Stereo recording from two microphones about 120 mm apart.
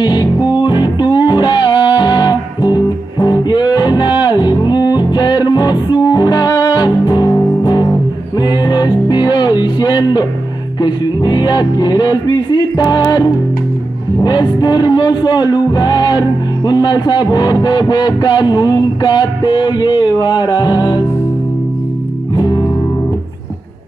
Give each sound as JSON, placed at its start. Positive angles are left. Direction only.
{"t": 0.0, "sound": "music", "side_deg": 35}
{"t": 22.3, "sound": "music", "side_deg": 35}